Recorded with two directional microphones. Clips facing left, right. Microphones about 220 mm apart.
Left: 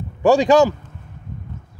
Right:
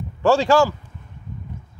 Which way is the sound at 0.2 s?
15° left (ahead or behind).